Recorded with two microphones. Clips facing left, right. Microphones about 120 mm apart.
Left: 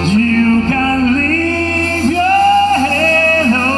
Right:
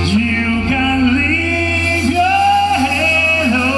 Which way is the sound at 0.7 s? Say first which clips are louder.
Left 1 dB; 45° left (ahead or behind).